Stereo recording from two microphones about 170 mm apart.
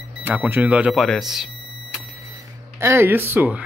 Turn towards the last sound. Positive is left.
turn(degrees=-10)  # may be behind; listen again after turning